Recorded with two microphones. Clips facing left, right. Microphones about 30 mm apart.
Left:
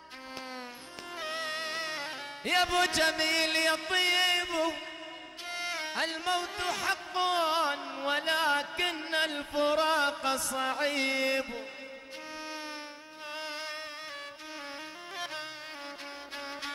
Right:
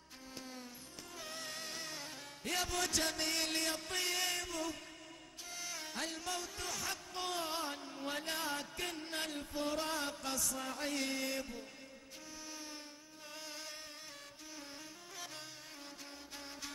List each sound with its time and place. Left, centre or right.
1.2 s music: left
13.4 s music: left